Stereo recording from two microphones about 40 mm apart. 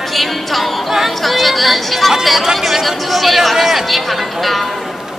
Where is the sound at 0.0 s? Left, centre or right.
Centre.